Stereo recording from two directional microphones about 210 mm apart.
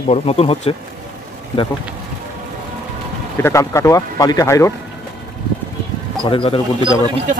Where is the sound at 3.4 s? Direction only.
15° left (ahead or behind).